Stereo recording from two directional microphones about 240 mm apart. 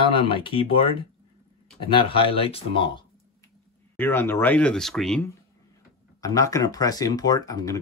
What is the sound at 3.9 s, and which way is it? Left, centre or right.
Speech, centre.